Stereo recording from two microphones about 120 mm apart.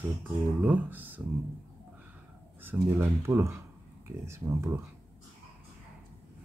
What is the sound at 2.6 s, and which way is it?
Speech, 20° right (ahead or behind).